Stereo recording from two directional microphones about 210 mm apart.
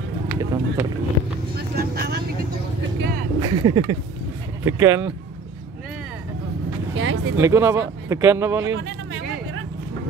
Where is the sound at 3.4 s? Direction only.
20° right (ahead or behind).